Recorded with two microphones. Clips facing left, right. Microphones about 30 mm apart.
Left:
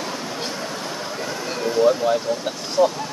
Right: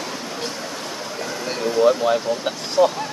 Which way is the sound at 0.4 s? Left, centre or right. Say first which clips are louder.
Left 1 dB; centre.